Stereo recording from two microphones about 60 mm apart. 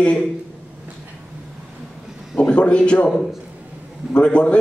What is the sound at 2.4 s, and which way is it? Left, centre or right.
Speech, centre.